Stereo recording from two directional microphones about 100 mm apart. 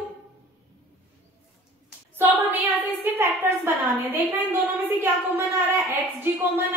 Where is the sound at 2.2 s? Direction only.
20° right (ahead or behind).